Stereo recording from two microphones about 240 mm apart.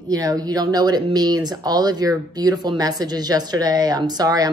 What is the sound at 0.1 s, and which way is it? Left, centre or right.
Speech, centre.